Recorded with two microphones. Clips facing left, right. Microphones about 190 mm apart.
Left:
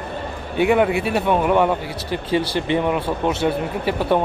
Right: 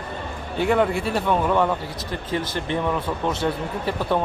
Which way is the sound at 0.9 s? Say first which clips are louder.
Left 3 dB; 65° left (ahead or behind).